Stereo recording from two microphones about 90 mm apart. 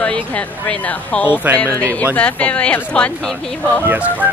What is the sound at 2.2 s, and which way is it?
Speech, 15° left (ahead or behind).